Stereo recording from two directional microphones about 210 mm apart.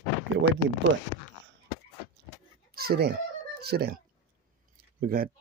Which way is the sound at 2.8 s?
50° right (ahead or behind).